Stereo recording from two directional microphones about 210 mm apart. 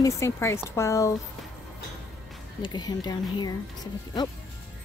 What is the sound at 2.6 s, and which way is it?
Speech, 20° left (ahead or behind).